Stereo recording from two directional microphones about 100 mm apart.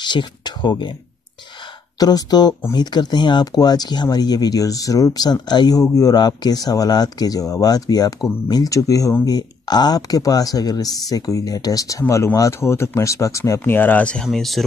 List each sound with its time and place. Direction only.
0.0 s speech: 50° left (ahead or behind)
2.0 s speech: 40° left (ahead or behind)
13.7 s speech: 20° left (ahead or behind); by 14.6 s centre (ahead or behind)